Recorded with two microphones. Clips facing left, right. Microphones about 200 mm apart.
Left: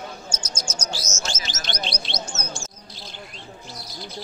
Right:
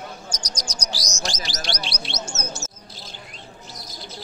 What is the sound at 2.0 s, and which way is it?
Bird, 5° right (ahead or behind).